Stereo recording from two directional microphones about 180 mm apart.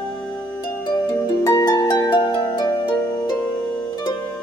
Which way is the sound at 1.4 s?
20° left (ahead or behind).